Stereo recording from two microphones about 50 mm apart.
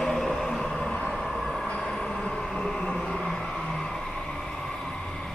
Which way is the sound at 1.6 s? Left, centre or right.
Centre.